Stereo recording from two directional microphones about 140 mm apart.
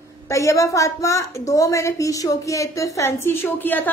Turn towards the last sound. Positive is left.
turn(degrees=15)  # may be behind; listen again after turning